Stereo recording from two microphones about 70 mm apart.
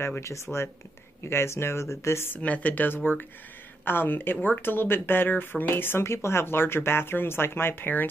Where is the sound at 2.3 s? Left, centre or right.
Left.